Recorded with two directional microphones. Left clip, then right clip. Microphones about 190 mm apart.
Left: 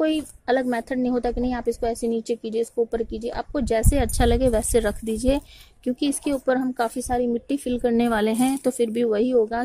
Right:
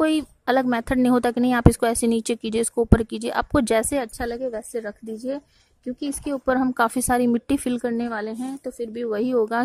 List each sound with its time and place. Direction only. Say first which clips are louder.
0.0 s a woman's voice: right 2 dB; 20° right (ahead or behind)
4.2 s a woman's voice: left 7 dB; centre (ahead or behind); by 7.8 s 25° right (ahead or behind)
7.8 s a woman's voice: left 5 dB; 10° right (ahead or behind)
8.1 s speech: left 7 dB; centre (ahead or behind)